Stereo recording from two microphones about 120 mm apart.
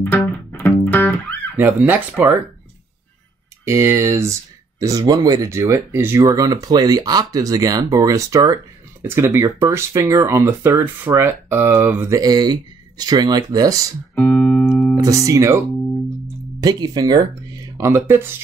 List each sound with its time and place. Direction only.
0.0 s music: 15° left (ahead or behind)
1.6 s speech: 15° right (ahead or behind)
3.6 s speech: 25° right (ahead or behind)
6.2 s speech: 30° right (ahead or behind)
12.2 s speech: 35° right (ahead or behind)
14.1 s music: 15° left (ahead or behind)
15.0 s speech: 30° right (ahead or behind)
16.6 s speech: 35° right (ahead or behind)